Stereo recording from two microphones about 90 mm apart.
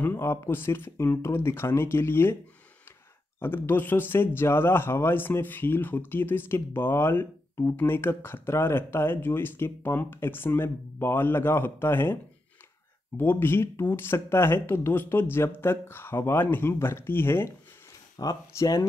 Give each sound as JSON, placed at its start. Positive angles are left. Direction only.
{"t": 0.0, "sound": "speech", "side_deg": 25}
{"t": 3.3, "sound": "speech", "side_deg": 25}
{"t": 13.2, "sound": "speech", "side_deg": 25}
{"t": 18.1, "sound": "speech", "side_deg": 45}